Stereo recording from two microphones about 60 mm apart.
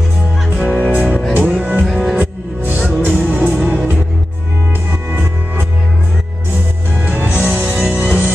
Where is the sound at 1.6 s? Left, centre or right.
Right.